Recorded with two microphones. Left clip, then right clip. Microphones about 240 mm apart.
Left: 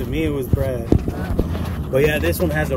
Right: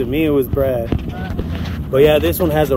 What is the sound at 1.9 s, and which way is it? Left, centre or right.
Speech, centre.